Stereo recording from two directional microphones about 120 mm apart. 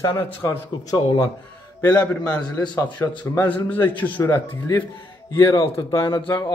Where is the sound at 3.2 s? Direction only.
15° left (ahead or behind).